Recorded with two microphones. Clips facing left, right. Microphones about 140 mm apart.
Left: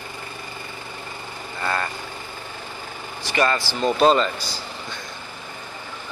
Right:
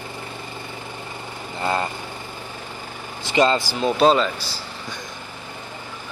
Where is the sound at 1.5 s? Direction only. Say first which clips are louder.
Right 3 dB; 20° right (ahead or behind).